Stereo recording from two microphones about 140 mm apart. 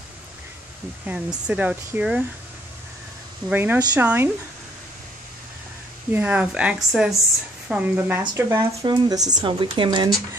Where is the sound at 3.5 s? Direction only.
15° right (ahead or behind).